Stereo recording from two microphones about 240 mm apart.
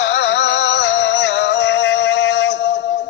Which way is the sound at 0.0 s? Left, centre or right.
Left.